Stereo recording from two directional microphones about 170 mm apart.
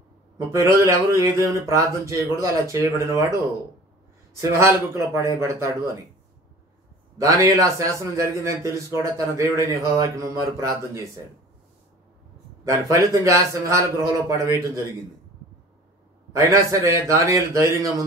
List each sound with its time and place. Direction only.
0.5 s a man's voice: 15° right (ahead or behind)
4.4 s a man's voice: 15° right (ahead or behind)
7.2 s a man's voice: 20° right (ahead or behind)
12.6 s a man's voice: 20° right (ahead or behind)
16.3 s a man's voice: 20° right (ahead or behind)